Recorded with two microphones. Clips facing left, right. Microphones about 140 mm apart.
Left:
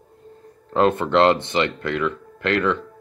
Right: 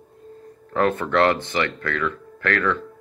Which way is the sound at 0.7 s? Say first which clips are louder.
Left 3 dB; 20° left (ahead or behind).